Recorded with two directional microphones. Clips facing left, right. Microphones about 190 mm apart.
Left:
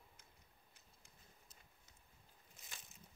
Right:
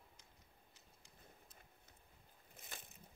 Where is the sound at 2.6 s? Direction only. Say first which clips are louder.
Right 5 dB; 55° right (ahead or behind).